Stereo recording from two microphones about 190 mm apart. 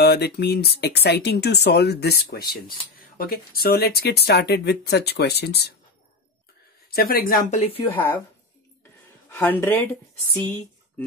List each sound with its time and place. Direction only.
0.0 s speech: 60° left (ahead or behind)
6.9 s speech: 50° left (ahead or behind)
7.6 s speech: 30° left (ahead or behind)
7.9 s speech: 10° left (ahead or behind)
9.3 s speech: 10° left (ahead or behind)